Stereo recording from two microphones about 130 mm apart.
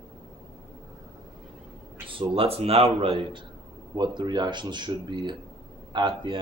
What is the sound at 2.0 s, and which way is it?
A man's voice, 45° right (ahead or behind).